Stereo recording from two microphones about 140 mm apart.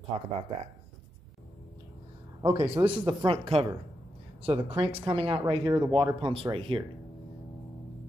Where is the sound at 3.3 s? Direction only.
40° right (ahead or behind).